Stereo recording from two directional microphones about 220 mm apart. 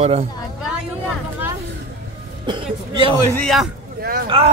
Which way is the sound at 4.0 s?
40° right (ahead or behind).